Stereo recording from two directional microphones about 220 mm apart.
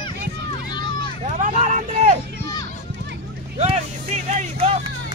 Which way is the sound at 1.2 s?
35° right (ahead or behind).